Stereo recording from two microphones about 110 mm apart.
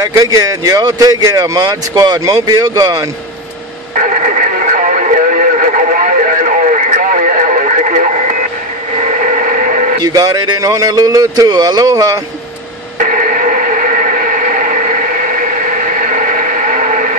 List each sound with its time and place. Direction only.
0.0 s speech: 30° right (ahead or behind)
4.2 s radio: 90° right
9.0 s vehicle: 90° right
10.0 s speech: 35° right (ahead or behind)